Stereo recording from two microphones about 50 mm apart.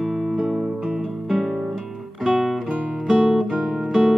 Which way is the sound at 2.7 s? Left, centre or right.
Centre.